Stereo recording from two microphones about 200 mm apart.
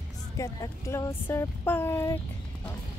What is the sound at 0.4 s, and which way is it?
Music, 15° left (ahead or behind).